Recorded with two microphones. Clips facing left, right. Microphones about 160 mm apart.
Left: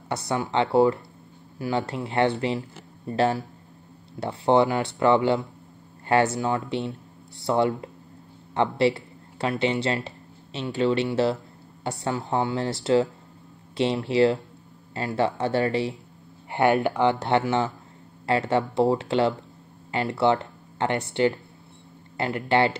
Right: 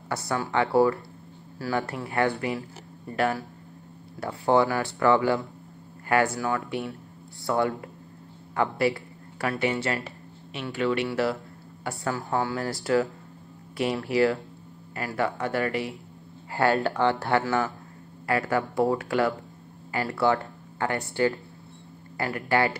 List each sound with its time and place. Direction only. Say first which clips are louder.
0.1 s speech: left 2 dB; 20° left (ahead or behind)